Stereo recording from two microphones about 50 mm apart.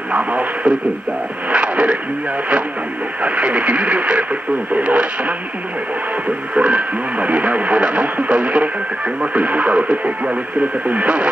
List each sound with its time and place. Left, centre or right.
0.1 s radio: right
3.2 s speech: right
6.5 s speech: right